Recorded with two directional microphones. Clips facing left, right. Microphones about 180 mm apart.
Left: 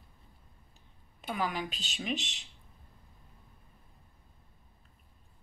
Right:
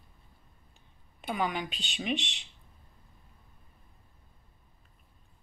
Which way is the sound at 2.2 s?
40° left (ahead or behind).